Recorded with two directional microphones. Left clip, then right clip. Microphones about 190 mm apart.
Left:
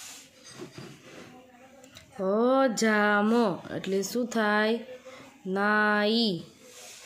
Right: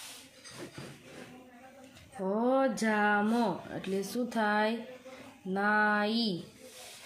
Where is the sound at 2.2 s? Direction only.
50° left (ahead or behind).